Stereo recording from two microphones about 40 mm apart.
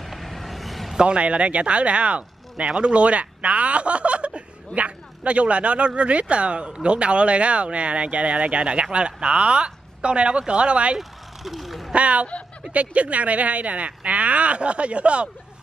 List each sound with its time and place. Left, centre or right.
0.0 s vehicle: centre
0.9 s speech: right
11.0 s a sound: centre
11.9 s speech: right